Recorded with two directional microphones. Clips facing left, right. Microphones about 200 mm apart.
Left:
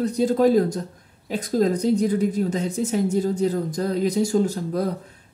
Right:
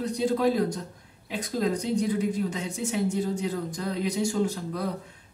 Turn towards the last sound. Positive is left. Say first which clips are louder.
# left 5 dB
turn(degrees=40)  # may be behind; listen again after turning